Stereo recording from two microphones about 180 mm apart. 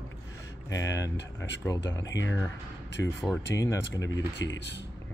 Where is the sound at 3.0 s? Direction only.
10° left (ahead or behind).